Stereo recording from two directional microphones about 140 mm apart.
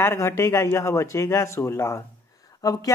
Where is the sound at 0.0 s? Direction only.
20° left (ahead or behind).